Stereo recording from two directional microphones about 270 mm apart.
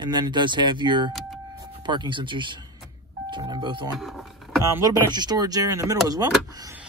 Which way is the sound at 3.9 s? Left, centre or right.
Centre.